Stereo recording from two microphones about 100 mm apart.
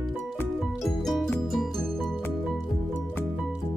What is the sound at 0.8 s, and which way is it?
Music, 5° left (ahead or behind).